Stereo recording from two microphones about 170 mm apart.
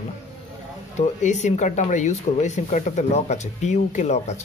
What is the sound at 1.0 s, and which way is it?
Speech, 45° left (ahead or behind).